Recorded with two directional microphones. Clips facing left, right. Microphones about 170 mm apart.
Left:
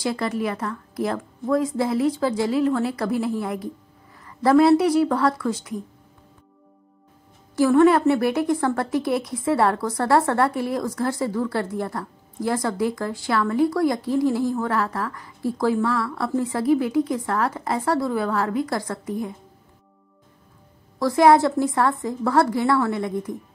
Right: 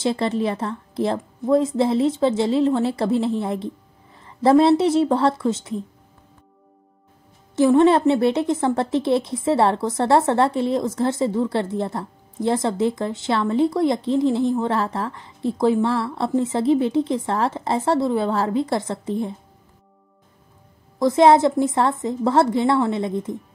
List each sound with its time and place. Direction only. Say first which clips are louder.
0.0 s a woman's voice: right 3 dB; 25° right (ahead or behind)
7.5 s a woman's voice: right 1 dB; 20° right (ahead or behind)
21.0 s a woman's voice: right 2 dB; 20° right (ahead or behind)